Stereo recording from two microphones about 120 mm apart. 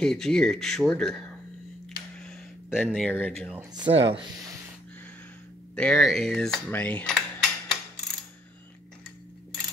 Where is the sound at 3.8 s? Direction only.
45° right (ahead or behind).